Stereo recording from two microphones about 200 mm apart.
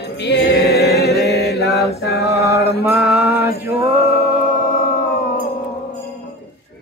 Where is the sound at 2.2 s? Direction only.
15° right (ahead or behind).